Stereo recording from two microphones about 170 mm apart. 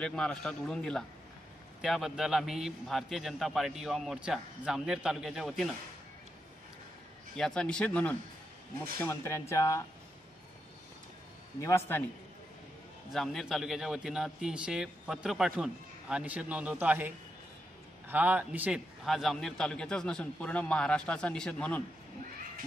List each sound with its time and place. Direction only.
0.0 s a man's voice: 5° left (ahead or behind)
7.3 s speech: 5° left (ahead or behind)
11.6 s speech: 15° left (ahead or behind)
13.1 s a man's voice: centre (ahead or behind)